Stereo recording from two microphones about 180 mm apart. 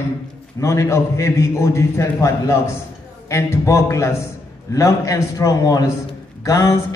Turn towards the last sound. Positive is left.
turn(degrees=15)  # may be behind; listen again after turning